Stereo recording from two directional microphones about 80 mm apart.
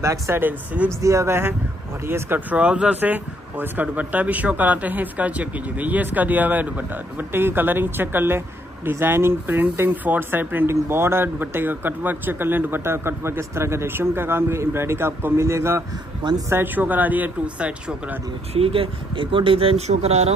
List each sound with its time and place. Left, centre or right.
0.0 s speech: right
0.4 s speech: right
0.8 s speech: right
2.5 s speech: centre; by 15.8 s right
16.2 s speech: right
16.4 s speech: right
19.1 s speech: right